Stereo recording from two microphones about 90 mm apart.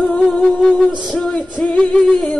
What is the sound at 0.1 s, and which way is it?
Music, 10° left (ahead or behind).